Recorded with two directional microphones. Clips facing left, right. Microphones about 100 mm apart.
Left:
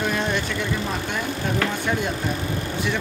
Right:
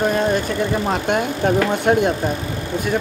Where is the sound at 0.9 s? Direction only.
60° right (ahead or behind).